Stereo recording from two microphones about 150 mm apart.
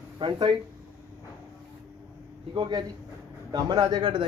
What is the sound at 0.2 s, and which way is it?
Speech, 30° right (ahead or behind).